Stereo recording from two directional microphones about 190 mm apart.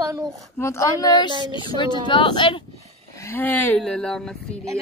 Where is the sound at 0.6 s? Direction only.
15° left (ahead or behind).